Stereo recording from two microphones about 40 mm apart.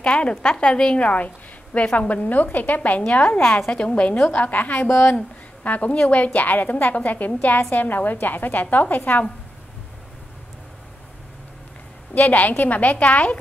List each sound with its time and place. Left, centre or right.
0.0 s a woman's voice: left
1.0 s a woman's voice: left
3.1 s a woman's voice: left
4.8 s a woman's voice: left
5.1 s a woman's voice: left
12.3 s a woman's voice: left